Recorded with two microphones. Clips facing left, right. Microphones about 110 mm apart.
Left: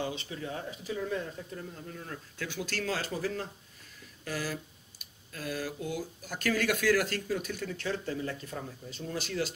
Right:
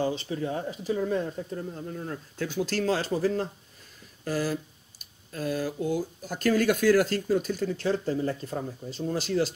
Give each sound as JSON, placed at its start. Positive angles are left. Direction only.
{"t": 0.0, "sound": "speech", "side_deg": -35}